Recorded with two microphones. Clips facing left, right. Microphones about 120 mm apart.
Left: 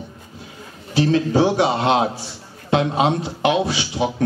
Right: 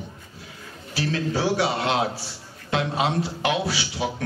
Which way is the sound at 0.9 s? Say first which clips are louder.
Left 8 dB; 20° left (ahead or behind).